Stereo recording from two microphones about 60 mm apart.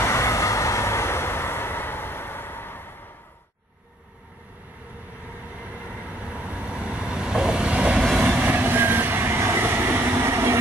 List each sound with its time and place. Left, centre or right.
0.0 s vehicle: left
6.0 s vehicle: right
8.4 s train: right